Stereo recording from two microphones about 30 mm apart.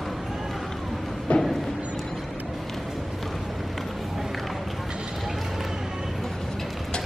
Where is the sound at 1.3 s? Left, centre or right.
Left.